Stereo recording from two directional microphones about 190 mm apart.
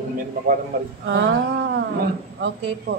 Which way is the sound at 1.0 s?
70° right (ahead or behind).